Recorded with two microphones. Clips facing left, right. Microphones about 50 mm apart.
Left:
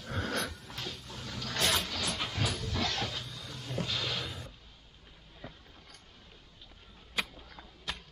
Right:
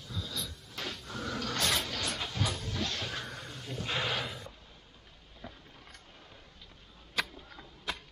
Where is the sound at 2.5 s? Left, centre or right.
Right.